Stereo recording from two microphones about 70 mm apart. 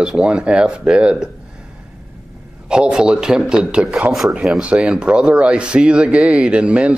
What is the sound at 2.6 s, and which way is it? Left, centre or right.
Speech, centre.